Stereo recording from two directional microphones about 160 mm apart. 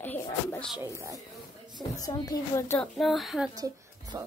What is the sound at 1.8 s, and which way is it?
A child's voice, 25° left (ahead or behind).